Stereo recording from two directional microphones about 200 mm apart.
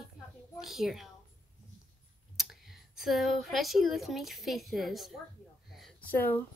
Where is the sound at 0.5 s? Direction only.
Centre (ahead or behind).